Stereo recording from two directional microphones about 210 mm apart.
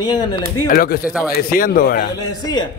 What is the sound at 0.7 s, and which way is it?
Speech, 45° left (ahead or behind).